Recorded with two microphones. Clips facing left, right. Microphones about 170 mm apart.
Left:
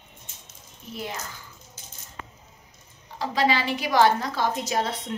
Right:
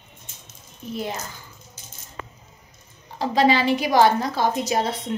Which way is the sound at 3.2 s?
20° right (ahead or behind).